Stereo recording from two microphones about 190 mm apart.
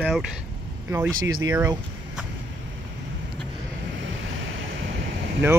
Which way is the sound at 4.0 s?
90° right.